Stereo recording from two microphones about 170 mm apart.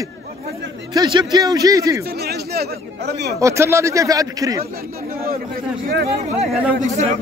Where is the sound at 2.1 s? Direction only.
70° right (ahead or behind).